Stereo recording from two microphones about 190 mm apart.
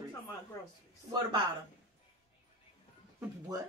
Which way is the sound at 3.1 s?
20° right (ahead or behind).